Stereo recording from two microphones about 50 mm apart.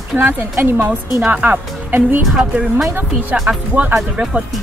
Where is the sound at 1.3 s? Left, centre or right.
Right.